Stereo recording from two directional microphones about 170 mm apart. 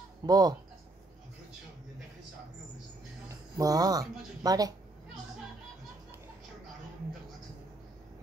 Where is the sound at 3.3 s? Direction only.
20° right (ahead or behind).